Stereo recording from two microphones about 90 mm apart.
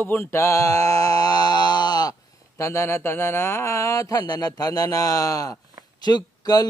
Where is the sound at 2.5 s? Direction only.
30° left (ahead or behind).